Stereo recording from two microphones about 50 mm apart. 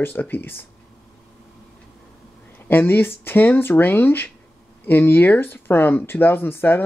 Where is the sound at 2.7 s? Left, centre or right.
Left.